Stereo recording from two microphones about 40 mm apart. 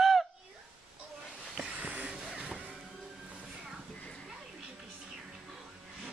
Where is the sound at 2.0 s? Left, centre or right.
Centre.